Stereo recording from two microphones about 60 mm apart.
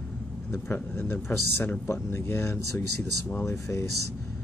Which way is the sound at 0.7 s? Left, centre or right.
Left.